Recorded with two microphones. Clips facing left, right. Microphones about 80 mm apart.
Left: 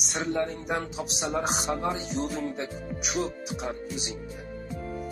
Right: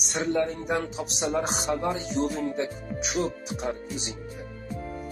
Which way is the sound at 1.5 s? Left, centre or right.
Left.